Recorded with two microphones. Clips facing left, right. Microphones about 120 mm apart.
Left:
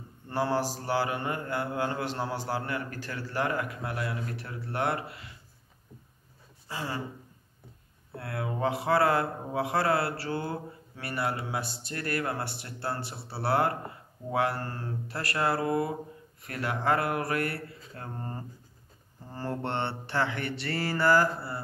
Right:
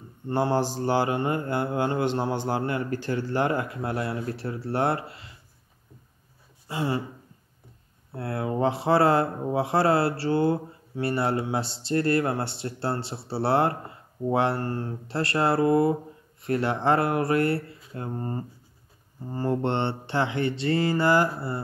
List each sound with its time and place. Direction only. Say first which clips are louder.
0.3 s speech: right 4 dB; 25° right (ahead or behind)
6.7 s speech: right 7 dB; 25° right (ahead or behind)
8.2 s speech: right 5 dB; 30° right (ahead or behind)